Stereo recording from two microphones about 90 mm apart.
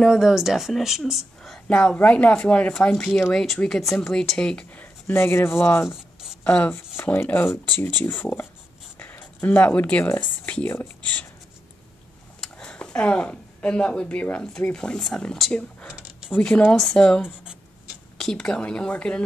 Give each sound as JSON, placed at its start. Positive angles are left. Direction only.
{"t": 0.0, "sound": "speech", "side_deg": -5}
{"t": 5.0, "sound": "speech", "side_deg": 25}
{"t": 6.4, "sound": "speech", "side_deg": 15}
{"t": 8.9, "sound": "a sound", "side_deg": 20}
{"t": 11.0, "sound": "speech", "side_deg": 15}
{"t": 12.4, "sound": "speech", "side_deg": 10}
{"t": 16.3, "sound": "speech", "side_deg": 15}